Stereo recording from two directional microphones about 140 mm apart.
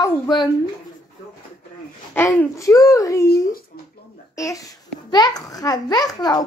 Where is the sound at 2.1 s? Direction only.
20° left (ahead or behind).